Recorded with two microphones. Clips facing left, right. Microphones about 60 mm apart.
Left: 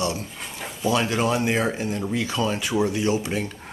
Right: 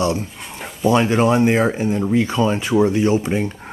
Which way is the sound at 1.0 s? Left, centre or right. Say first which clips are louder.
Right 7 dB; right.